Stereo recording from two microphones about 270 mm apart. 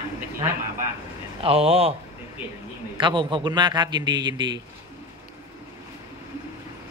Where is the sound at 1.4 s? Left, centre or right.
Right.